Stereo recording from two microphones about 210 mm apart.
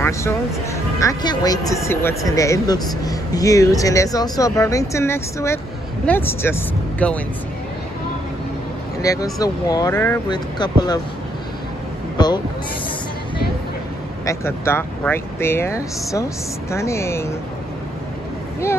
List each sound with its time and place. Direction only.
0.0 s speech: 15° left (ahead or behind)
9.0 s speech: 15° left (ahead or behind)
14.2 s speech: 15° left (ahead or behind)